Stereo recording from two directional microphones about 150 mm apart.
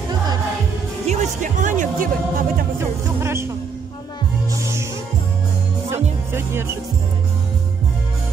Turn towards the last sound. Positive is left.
turn(degrees=-15)  # may be behind; listen again after turning